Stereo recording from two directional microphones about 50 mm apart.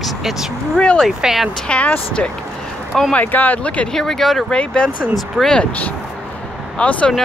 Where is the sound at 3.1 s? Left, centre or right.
Left.